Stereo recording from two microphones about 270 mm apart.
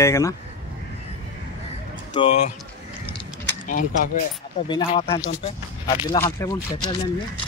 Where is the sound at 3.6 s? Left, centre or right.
Left.